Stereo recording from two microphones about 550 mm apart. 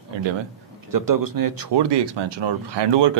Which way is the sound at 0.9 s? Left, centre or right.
Right.